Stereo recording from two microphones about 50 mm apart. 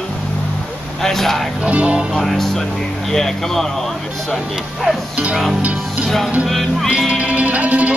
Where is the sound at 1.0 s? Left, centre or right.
Centre.